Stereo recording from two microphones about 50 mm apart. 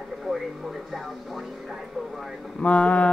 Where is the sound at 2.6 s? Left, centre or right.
Left.